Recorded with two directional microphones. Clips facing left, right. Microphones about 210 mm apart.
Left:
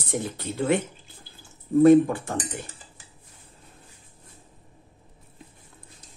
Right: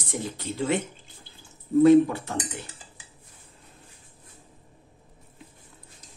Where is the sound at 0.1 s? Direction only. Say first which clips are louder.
Left 2 dB; 55° left (ahead or behind).